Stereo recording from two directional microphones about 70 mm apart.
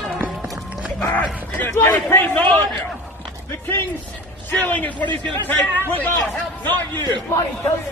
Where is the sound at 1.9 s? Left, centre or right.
Left.